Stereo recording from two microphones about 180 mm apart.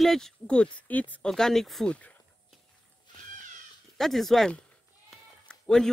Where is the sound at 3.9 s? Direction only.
Centre (ahead or behind).